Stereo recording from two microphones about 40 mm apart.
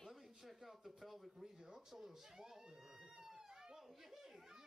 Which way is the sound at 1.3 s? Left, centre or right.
Centre.